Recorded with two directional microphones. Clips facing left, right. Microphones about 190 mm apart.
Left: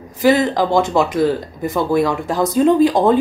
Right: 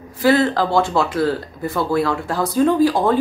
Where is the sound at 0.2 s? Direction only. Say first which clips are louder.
Left 1 dB; 15° left (ahead or behind).